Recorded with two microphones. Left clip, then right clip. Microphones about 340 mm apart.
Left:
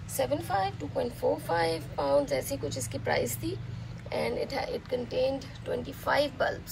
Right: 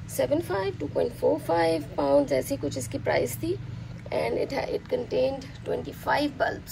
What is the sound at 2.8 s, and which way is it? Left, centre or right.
Speech, left.